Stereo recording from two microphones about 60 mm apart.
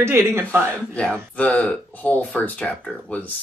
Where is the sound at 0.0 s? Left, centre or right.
Right.